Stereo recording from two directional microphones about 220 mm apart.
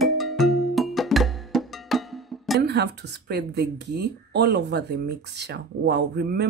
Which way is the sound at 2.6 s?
50° right (ahead or behind).